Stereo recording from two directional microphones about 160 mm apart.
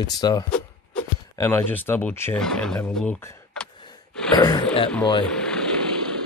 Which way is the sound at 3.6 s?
5° left (ahead or behind).